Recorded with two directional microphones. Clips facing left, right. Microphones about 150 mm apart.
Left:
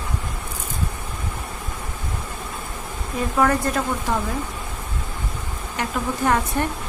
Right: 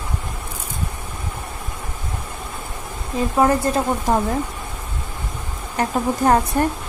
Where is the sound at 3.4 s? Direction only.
25° right (ahead or behind).